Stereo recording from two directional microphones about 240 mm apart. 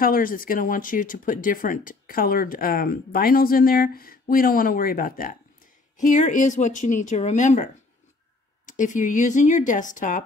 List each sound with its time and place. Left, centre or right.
0.0 s speech: left